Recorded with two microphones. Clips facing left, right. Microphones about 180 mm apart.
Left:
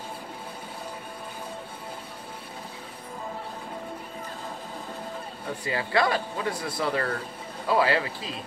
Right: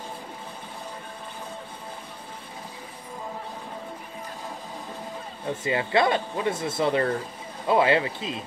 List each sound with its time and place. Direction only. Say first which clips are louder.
5.6 s speech: right 2 dB; 20° right (ahead or behind)